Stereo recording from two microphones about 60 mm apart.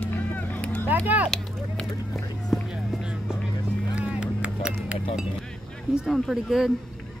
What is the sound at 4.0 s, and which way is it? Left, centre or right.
Music, centre.